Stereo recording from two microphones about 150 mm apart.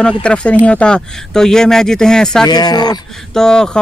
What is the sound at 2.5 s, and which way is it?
Speech, 25° left (ahead or behind).